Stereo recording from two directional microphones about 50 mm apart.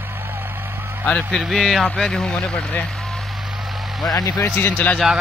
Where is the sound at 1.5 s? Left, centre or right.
Centre.